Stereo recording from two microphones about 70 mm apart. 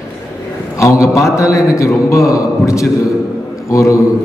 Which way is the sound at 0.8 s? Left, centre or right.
Left.